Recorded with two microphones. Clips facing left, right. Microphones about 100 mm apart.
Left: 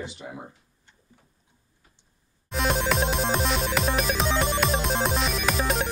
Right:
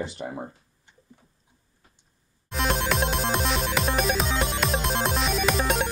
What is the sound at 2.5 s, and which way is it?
Music, centre (ahead or behind).